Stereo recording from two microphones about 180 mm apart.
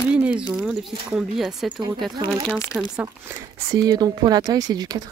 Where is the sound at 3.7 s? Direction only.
20° right (ahead or behind).